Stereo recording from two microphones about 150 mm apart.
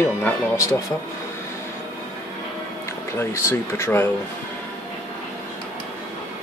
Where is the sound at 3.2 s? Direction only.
15° left (ahead or behind).